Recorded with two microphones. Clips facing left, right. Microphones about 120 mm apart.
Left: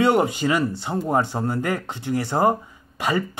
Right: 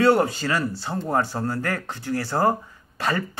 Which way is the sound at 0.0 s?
15° left (ahead or behind).